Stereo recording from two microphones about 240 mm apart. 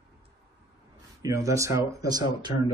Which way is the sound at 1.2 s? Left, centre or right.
Centre.